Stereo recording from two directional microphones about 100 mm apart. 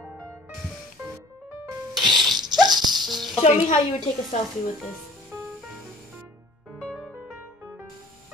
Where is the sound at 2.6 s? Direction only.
45° right (ahead or behind).